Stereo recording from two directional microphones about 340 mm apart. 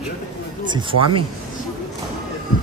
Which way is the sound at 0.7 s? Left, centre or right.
Centre.